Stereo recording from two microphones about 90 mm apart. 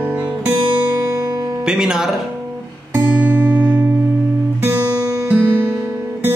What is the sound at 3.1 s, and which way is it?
Music, 15° right (ahead or behind).